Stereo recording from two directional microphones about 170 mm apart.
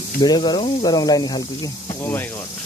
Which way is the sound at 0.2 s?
25° left (ahead or behind).